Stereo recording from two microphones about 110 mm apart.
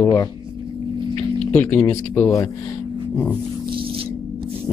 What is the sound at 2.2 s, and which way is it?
Speech, 30° left (ahead or behind).